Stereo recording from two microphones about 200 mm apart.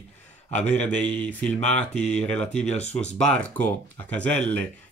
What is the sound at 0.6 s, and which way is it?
Speech, 35° left (ahead or behind).